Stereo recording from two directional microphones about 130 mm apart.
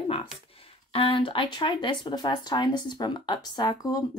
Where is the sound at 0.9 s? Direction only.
45° left (ahead or behind).